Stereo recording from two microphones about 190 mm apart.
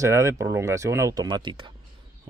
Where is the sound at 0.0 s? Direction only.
15° right (ahead or behind).